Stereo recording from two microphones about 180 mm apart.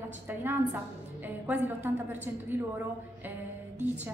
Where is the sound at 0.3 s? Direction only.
10° right (ahead or behind).